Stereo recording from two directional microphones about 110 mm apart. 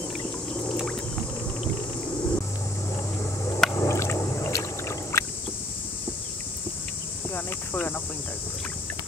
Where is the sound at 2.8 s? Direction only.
25° left (ahead or behind).